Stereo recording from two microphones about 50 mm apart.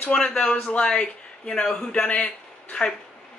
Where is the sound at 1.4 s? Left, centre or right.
Centre.